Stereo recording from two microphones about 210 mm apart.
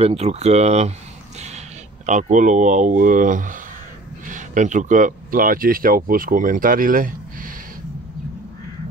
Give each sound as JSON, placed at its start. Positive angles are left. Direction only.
{"t": 0.0, "sound": "speech", "side_deg": -30}
{"t": 2.0, "sound": "speech", "side_deg": -35}